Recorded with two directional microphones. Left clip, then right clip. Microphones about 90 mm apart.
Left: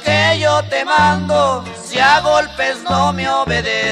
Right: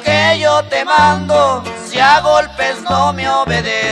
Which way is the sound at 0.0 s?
45° left (ahead or behind).